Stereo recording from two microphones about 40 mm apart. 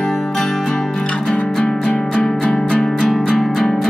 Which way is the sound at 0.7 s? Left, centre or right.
Centre.